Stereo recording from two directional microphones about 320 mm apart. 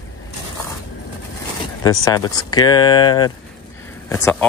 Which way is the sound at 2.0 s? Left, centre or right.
Centre.